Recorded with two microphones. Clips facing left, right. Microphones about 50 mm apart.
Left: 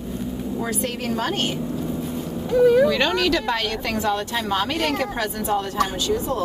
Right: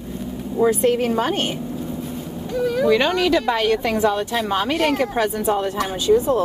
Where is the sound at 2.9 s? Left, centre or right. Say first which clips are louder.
Right 3 dB; centre; by 6.4 s right.